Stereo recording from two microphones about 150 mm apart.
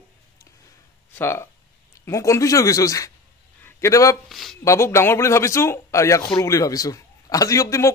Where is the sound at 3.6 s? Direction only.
20° left (ahead or behind).